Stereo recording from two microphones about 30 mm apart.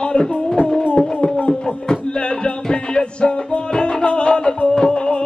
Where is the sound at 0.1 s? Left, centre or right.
Left.